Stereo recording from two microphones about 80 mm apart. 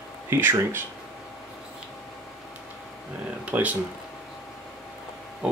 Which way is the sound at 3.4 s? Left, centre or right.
Centre.